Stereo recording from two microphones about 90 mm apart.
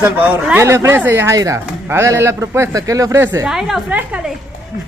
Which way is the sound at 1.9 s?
30° right (ahead or behind).